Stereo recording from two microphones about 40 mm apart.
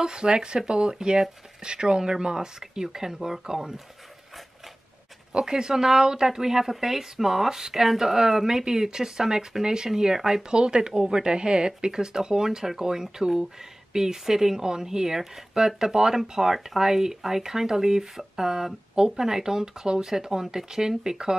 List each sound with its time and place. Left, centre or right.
0.0 s speech: centre
5.3 s speech: centre
10.5 s speech: right